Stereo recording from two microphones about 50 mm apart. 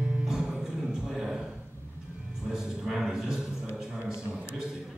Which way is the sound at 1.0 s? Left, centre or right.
Centre.